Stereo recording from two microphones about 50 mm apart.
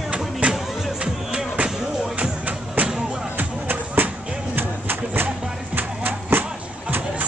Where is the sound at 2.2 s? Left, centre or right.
Right.